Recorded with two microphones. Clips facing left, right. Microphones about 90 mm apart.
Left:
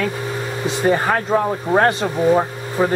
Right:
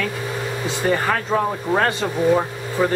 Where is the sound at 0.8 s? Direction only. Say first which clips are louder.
Left 3 dB; 20° left (ahead or behind).